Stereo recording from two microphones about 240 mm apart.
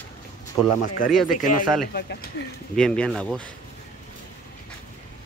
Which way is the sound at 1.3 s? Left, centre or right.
Left.